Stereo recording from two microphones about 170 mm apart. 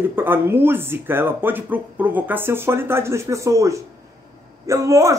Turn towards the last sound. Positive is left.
turn(degrees=-15)  # may be behind; listen again after turning